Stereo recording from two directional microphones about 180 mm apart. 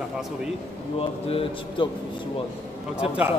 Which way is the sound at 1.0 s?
30° left (ahead or behind).